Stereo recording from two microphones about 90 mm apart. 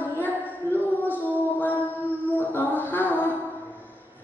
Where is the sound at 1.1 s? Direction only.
20° left (ahead or behind).